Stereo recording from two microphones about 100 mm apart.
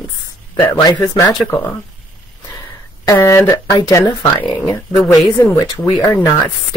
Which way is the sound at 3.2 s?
35° left (ahead or behind).